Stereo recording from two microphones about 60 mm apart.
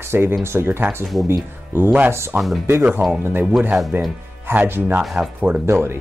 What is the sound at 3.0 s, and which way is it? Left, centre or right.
Speech, right.